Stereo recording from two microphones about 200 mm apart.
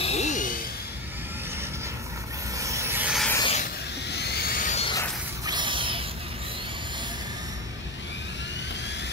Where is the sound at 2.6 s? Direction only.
15° right (ahead or behind).